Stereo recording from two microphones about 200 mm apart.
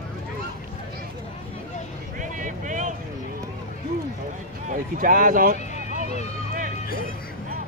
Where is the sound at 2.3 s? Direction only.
40° right (ahead or behind).